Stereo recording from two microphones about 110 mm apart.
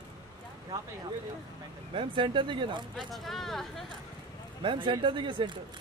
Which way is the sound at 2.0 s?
50° right (ahead or behind).